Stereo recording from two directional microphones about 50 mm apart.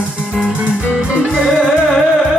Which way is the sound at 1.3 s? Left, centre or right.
Centre.